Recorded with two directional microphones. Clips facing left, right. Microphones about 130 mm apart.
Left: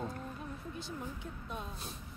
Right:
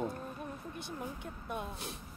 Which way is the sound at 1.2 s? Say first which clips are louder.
Right 3 dB; 60° right (ahead or behind).